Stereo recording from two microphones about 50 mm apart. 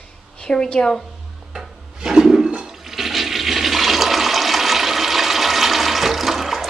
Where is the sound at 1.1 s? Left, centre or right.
Centre.